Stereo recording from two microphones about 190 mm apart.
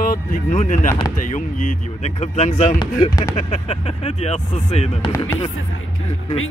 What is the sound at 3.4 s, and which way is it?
Speech, 30° left (ahead or behind).